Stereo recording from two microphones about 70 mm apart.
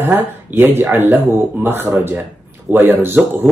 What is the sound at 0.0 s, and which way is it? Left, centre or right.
Speech, right.